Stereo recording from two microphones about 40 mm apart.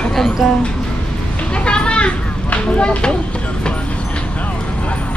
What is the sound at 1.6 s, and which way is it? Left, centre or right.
Children playing, left.